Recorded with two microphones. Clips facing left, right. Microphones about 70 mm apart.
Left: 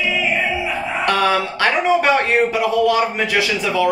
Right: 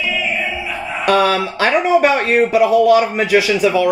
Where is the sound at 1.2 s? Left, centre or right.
Centre.